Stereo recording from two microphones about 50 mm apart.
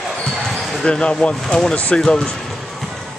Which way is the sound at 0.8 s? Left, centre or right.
Left.